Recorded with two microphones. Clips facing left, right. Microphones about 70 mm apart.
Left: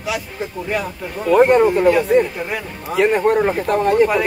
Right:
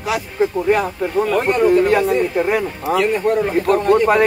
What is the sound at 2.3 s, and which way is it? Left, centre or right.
Speech, right.